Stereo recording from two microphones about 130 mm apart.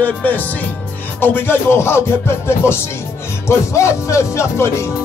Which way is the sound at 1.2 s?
15° left (ahead or behind).